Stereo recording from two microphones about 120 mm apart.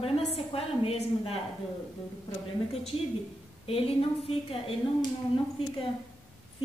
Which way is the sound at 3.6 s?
55° left (ahead or behind).